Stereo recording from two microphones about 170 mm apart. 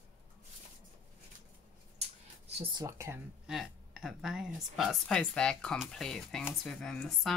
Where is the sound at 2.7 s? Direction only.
15° right (ahead or behind).